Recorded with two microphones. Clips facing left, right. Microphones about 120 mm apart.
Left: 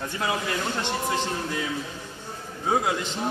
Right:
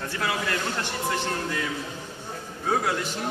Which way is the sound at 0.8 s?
20° left (ahead or behind).